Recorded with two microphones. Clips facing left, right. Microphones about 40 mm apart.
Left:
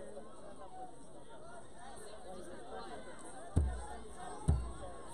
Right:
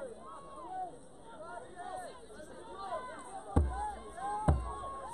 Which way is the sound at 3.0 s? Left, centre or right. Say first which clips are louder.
Right 6 dB; right.